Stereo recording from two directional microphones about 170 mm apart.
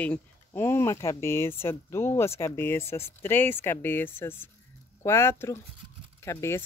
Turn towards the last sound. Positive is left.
turn(degrees=15)  # may be behind; listen again after turning